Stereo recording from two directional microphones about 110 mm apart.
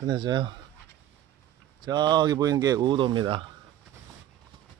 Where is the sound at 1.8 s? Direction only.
40° right (ahead or behind).